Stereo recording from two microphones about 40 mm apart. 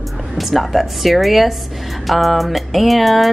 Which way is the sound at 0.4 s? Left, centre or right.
Centre.